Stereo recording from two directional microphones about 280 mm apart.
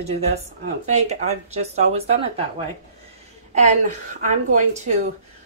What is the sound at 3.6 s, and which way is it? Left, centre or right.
A woman's voice, right.